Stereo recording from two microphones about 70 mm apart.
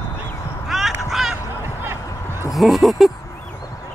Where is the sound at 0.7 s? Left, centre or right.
Centre.